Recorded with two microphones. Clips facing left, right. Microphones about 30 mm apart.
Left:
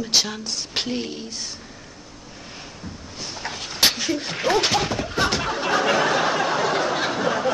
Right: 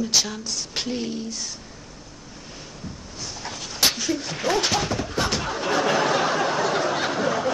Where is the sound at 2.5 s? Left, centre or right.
Left.